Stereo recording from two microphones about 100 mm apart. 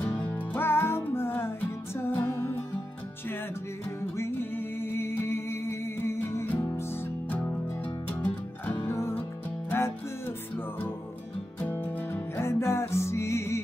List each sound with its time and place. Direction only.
0.5 s music: 20° left (ahead or behind)
4.0 s music: 20° left (ahead or behind)
8.9 s music: 25° left (ahead or behind)
11.7 s music: 25° left (ahead or behind)